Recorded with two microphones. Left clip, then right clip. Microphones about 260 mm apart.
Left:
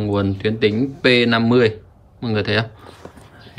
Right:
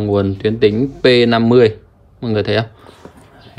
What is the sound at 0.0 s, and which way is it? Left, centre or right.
Speech, centre.